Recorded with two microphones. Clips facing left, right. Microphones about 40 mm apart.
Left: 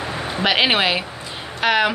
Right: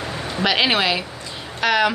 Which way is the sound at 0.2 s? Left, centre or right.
Left.